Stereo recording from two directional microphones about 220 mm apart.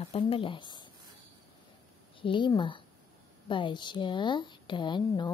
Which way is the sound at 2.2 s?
20° left (ahead or behind).